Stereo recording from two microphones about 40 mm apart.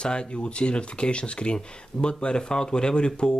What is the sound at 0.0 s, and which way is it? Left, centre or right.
Speech, left.